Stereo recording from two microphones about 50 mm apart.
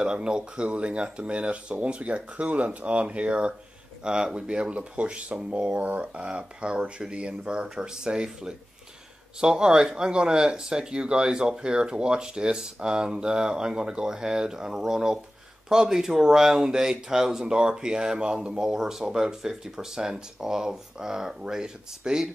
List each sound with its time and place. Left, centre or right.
0.0 s speech: centre